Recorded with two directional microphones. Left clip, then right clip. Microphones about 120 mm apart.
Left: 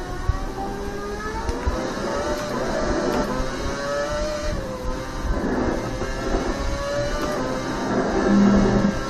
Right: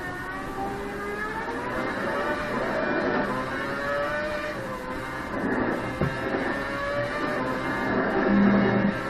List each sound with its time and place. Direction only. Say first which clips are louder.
8.2 s music: left 4 dB; 30° left (ahead or behind)